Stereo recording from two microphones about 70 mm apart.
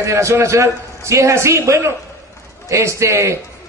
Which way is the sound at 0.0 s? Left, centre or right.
Right.